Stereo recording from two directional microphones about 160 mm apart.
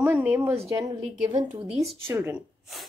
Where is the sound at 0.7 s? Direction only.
20° right (ahead or behind).